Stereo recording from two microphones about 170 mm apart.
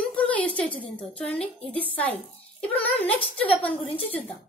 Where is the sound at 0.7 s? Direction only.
30° left (ahead or behind).